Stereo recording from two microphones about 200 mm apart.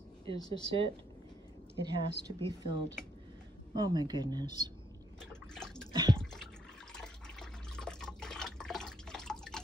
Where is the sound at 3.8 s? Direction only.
20° right (ahead or behind).